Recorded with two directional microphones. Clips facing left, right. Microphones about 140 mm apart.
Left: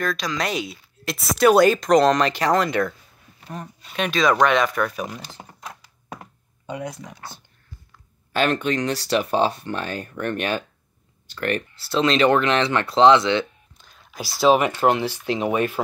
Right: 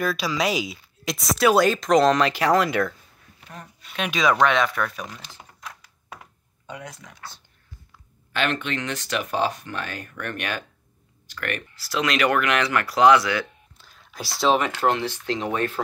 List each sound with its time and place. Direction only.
0.0 s speech: 5° right (ahead or behind)
4.1 s speech: 5° right (ahead or behind)
5.4 s typing: 35° left (ahead or behind)
6.6 s speech: 15° left (ahead or behind)
8.3 s speech: 40° left (ahead or behind)
13.7 s a sound: centre (ahead or behind)
14.8 s speech: 15° left (ahead or behind)